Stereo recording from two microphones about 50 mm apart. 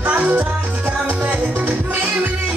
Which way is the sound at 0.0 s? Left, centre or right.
Right.